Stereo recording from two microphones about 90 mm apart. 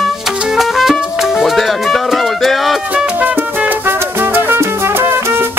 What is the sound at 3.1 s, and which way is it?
Music, 15° right (ahead or behind).